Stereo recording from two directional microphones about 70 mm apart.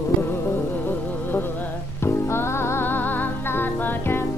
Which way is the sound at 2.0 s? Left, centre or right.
Left.